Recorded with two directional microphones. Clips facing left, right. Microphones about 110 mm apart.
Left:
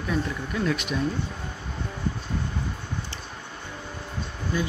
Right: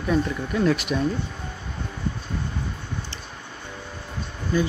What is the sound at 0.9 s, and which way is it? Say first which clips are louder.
Speech: right 3 dB; 15° right (ahead or behind).